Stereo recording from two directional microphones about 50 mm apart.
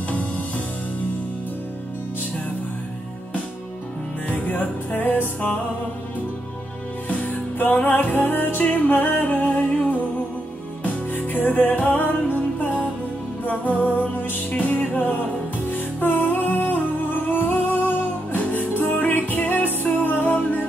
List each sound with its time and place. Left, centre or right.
4.3 s music: left
7.1 s music: left
11.3 s music: left